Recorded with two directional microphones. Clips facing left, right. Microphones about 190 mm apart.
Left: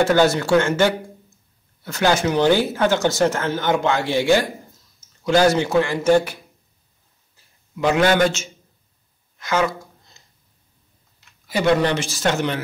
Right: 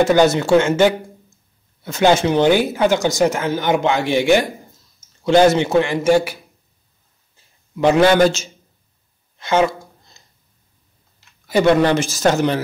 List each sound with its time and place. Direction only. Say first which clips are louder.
0.0 s a man's voice: right 3 dB; 15° right (ahead or behind)
7.8 s a man's voice: right 4 dB; 30° right (ahead or behind)
11.4 s a man's voice: right 4 dB; 50° right (ahead or behind)